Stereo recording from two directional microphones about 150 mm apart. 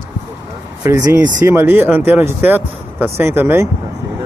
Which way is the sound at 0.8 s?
25° right (ahead or behind).